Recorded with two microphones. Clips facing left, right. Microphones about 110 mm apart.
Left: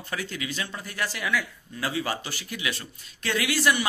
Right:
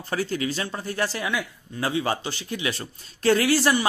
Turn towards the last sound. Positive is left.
turn(degrees=-30)  # may be behind; listen again after turning